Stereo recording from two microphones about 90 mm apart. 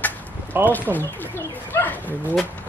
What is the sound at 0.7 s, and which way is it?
Speech, 20° left (ahead or behind).